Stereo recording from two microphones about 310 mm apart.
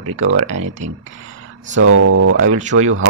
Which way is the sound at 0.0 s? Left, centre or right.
Right.